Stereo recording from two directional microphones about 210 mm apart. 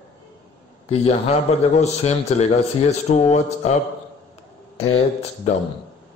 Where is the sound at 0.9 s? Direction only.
30° left (ahead or behind).